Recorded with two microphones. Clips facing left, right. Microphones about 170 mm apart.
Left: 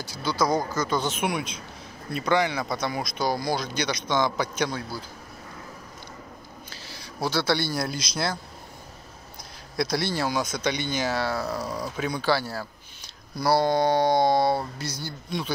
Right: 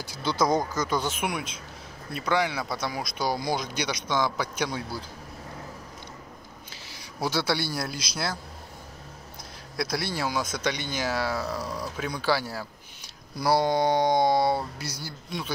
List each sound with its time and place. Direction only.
0.1 s speech: 20° right (ahead or behind); by 4.7 s 5° right (ahead or behind)
6.7 s a sound: 20° right (ahead or behind)
7.2 s speech: 15° right (ahead or behind)
9.8 s speech: centre (ahead or behind)
11.4 s speech: 5° left (ahead or behind)